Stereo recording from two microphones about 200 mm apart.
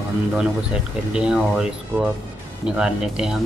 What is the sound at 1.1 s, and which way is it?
Speech, 5° right (ahead or behind).